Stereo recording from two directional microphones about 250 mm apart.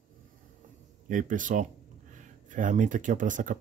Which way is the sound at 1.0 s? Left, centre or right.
Right.